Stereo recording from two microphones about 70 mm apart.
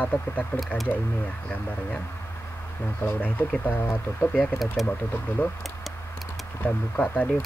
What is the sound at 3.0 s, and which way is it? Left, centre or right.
Speech, left.